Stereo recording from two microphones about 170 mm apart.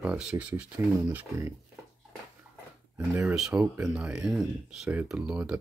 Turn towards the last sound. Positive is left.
turn(degrees=-5)  # may be behind; listen again after turning